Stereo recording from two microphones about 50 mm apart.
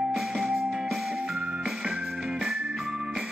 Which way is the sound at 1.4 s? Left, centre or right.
Right.